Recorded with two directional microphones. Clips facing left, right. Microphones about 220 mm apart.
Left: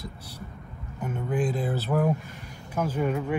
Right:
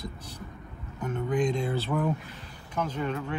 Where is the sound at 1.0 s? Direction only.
10° left (ahead or behind).